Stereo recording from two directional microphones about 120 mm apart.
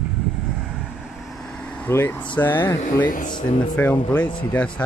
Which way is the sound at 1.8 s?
20° left (ahead or behind).